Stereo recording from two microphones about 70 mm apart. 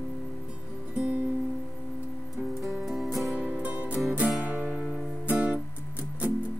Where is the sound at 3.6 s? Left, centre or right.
Right.